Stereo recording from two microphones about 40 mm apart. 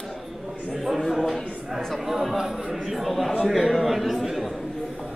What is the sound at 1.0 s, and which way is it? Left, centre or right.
A man's voice, centre.